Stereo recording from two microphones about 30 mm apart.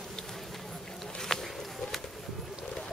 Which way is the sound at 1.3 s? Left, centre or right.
Centre.